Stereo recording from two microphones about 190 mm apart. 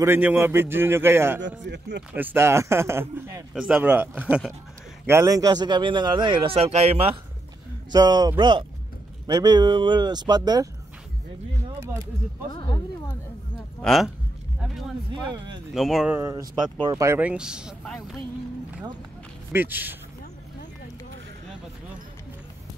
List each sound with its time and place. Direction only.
0.0 s a man's voice: 10° right (ahead or behind)
1.6 s speech: 65° right (ahead or behind)
2.1 s a man's voice: 15° right (ahead or behind); by 7.1 s 35° right (ahead or behind)
7.9 s a man's voice: 20° right (ahead or behind)
13.7 s a man's voice: centre (ahead or behind)
15.2 s a man's voice: 25° right (ahead or behind)
15.7 s speech: centre (ahead or behind)
19.5 s a man's voice: 10° right (ahead or behind)